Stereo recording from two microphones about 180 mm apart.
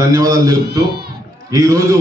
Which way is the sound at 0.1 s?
20° right (ahead or behind).